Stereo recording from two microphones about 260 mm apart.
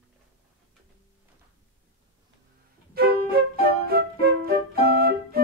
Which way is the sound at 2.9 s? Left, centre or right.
Right.